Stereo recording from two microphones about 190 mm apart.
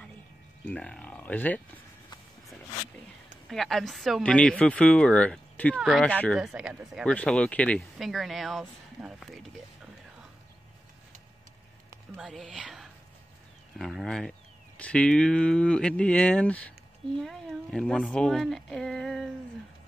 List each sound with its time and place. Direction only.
0.7 s speech: 5° left (ahead or behind)
3.4 s speech: centre (ahead or behind)
12.2 s speech: centre (ahead or behind)